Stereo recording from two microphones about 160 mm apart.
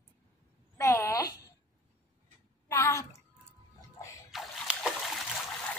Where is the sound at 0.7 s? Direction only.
20° left (ahead or behind).